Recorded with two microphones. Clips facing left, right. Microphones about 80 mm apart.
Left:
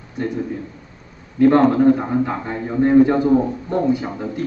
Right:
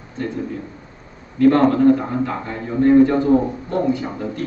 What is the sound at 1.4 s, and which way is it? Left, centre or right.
A man's voice, centre.